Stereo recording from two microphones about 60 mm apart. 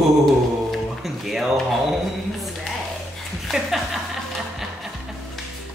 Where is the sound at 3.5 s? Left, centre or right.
Centre.